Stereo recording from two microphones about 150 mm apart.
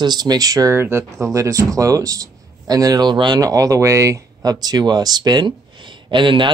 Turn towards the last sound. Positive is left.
turn(degrees=-35)  # may be behind; listen again after turning